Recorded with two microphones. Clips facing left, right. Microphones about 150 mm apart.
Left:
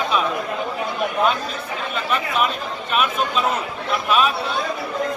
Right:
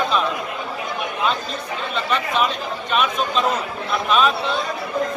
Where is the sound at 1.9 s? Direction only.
5° left (ahead or behind).